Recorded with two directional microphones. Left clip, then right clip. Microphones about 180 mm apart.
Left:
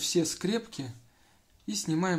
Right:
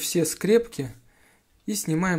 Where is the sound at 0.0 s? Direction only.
25° right (ahead or behind).